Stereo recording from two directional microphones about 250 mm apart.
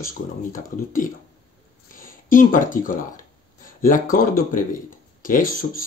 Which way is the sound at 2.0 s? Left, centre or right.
Left.